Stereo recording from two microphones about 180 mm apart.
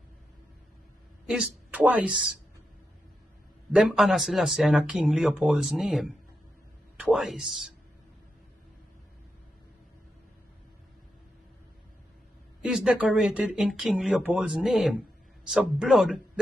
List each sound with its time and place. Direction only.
1.2 s a woman's voice: 5° right (ahead or behind)
3.7 s speech: centre (ahead or behind)
12.6 s speech: 5° right (ahead or behind)